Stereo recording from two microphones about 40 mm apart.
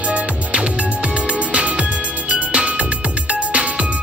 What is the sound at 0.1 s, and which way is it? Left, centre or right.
Music, right.